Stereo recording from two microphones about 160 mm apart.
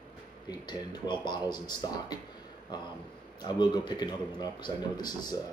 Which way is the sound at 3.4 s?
25° left (ahead or behind).